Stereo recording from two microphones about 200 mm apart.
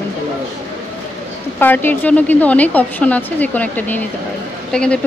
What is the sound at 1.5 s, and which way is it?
A woman's voice, 10° left (ahead or behind).